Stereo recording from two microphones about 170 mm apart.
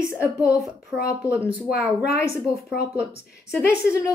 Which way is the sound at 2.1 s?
15° left (ahead or behind).